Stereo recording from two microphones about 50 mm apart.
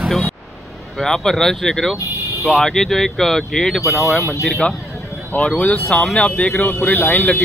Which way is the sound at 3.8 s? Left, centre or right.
Centre.